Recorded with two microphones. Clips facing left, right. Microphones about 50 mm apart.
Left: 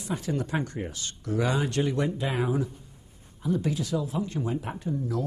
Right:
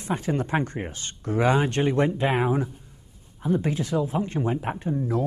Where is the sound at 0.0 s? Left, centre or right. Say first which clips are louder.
Right 4 dB; right.